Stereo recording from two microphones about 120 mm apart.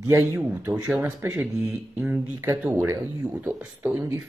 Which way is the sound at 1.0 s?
20° right (ahead or behind).